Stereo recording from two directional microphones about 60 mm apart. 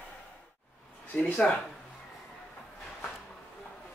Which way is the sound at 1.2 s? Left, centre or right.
Centre.